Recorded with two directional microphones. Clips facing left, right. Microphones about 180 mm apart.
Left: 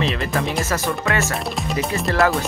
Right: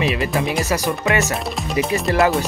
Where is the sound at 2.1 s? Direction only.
20° right (ahead or behind).